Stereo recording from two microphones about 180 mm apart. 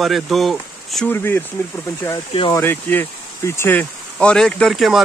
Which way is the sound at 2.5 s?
10° left (ahead or behind).